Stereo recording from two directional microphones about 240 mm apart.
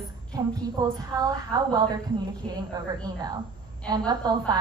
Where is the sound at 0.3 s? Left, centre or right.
Centre.